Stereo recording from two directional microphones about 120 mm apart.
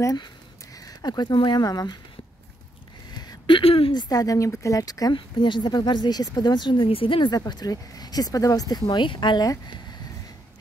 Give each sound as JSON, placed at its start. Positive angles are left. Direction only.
{"t": 0.0, "sound": "speech", "side_deg": 30}
{"t": 3.1, "sound": "a sound", "side_deg": 35}
{"t": 3.9, "sound": "speech", "side_deg": 30}
{"t": 8.8, "sound": "speech", "side_deg": 45}